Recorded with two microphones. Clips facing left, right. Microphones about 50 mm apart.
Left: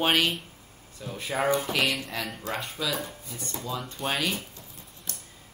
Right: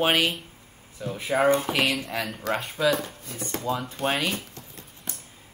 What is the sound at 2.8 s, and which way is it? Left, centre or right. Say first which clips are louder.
Speech: right 9 dB; right.